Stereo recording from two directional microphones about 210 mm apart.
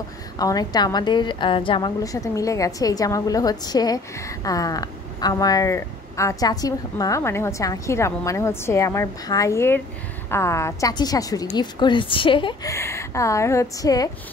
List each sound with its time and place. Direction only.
0.4 s a woman's voice: 20° left (ahead or behind)